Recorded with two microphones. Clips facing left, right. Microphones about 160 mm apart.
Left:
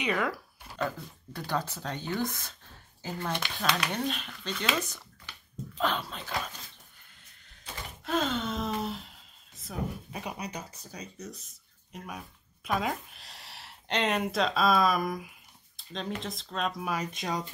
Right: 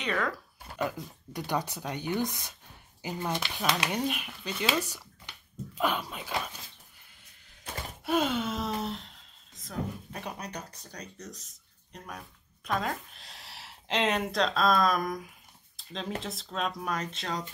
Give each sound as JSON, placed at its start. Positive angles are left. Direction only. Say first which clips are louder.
{"t": 0.0, "sound": "speech", "louder": "left 1 dB", "side_deg": 10}
{"t": 0.7, "sound": "speech", "louder": "right 1 dB", "side_deg": -15}
{"t": 4.7, "sound": "a sound", "louder": "right 2 dB", "side_deg": -10}
{"t": 5.8, "sound": "speech", "louder": "right 1 dB", "side_deg": -10}
{"t": 8.0, "sound": "speech", "louder": "right 2 dB", "side_deg": -10}